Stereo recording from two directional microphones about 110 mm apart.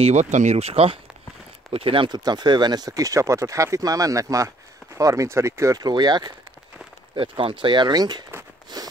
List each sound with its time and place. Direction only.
0.0 s speech: 90° right; by 2.0 s 55° right (ahead or behind)
2.0 s speech: 40° right (ahead or behind)
7.2 s speech: 50° right (ahead or behind)
8.7 s a sound: 40° right (ahead or behind)